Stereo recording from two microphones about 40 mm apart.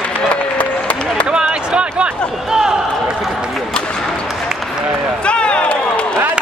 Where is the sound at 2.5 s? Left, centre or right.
Centre.